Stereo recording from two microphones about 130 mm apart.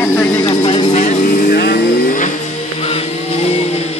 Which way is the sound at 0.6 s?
50° left (ahead or behind).